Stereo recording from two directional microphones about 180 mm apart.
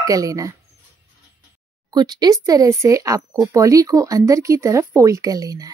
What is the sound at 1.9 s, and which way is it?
A woman's voice, 20° right (ahead or behind).